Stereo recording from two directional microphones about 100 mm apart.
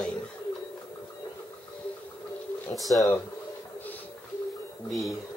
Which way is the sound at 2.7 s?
Centre (ahead or behind).